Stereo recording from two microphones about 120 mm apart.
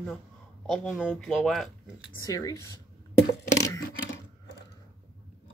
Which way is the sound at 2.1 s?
30° left (ahead or behind).